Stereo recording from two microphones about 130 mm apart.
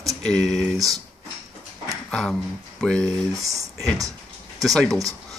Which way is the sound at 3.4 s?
25° right (ahead or behind).